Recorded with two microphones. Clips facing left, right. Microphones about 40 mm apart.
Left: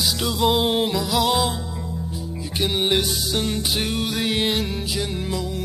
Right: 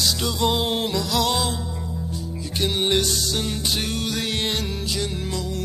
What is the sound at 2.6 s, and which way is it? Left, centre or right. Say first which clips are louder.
Music: left 1 dB; centre.